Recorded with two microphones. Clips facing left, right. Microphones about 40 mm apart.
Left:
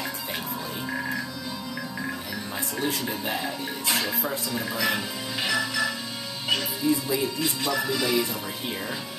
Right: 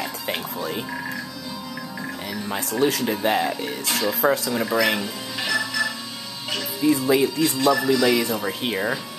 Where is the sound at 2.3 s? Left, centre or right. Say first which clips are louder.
Right 5 dB; right.